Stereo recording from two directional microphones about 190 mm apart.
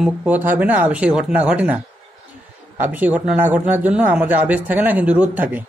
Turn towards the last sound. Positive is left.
turn(degrees=-10)  # may be behind; listen again after turning